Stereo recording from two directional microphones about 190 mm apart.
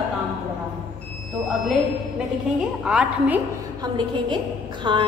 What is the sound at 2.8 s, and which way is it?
Speech, 5° right (ahead or behind).